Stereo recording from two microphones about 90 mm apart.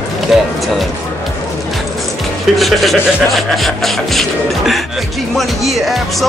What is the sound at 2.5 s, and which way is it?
Speech, centre (ahead or behind).